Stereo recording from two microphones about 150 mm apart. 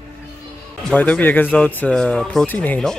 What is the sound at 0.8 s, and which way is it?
Speech, 10° left (ahead or behind).